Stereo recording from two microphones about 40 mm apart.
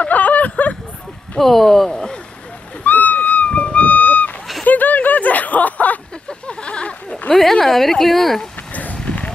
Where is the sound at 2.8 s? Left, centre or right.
Left.